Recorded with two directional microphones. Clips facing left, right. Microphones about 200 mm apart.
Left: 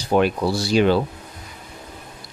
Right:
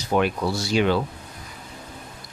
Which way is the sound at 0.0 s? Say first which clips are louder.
Left 3 dB; 30° left (ahead or behind).